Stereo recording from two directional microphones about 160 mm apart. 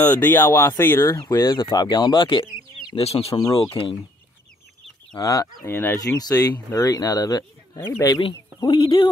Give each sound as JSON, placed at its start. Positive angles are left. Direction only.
{"t": 0.0, "sound": "speech", "side_deg": 10}
{"t": 5.1, "sound": "speech", "side_deg": 20}